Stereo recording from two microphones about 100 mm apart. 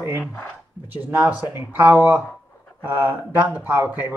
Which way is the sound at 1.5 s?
20° right (ahead or behind).